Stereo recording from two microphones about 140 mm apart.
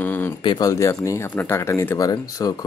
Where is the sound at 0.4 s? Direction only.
30° left (ahead or behind).